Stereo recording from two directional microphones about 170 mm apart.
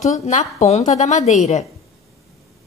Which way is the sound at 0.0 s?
45° left (ahead or behind).